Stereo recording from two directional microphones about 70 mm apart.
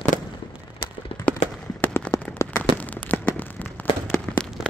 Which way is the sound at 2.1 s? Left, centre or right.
Left.